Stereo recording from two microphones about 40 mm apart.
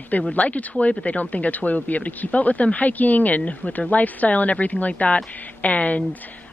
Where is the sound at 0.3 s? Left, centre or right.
Left.